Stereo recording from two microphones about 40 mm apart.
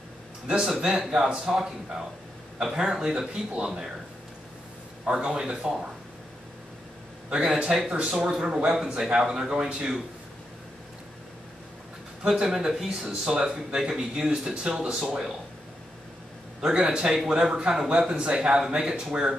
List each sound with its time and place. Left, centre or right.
0.5 s speech: centre
5.0 s speech: right
7.2 s speech: right
12.2 s speech: centre
16.6 s speech: centre